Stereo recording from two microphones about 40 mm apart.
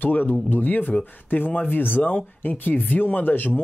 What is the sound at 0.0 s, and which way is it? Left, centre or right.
Speech, left.